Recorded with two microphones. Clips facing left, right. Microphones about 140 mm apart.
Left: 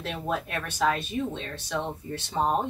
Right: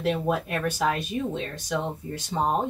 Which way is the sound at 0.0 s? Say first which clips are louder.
Right 5 dB; 10° right (ahead or behind).